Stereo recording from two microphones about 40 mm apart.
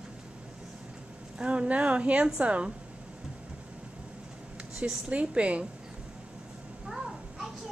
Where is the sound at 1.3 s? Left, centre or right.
Right.